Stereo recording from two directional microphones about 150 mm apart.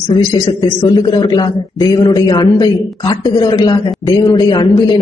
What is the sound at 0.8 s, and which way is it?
A man's voice, 30° left (ahead or behind).